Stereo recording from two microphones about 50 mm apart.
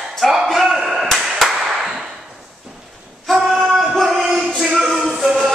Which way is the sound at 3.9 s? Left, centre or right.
Centre.